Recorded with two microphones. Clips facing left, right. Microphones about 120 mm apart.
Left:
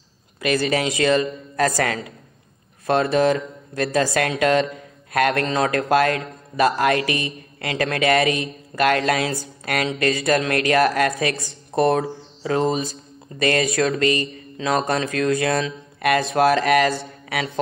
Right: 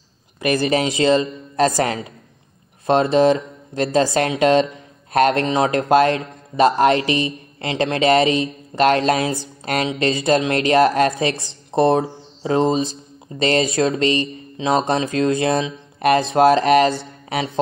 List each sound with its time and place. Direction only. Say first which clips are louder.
0.5 s a man's voice: right 2 dB; 25° right (ahead or behind)
17.3 s mantra: right 3 dB; 25° right (ahead or behind)